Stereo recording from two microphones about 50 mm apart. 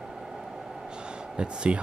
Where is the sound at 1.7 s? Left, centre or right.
Right.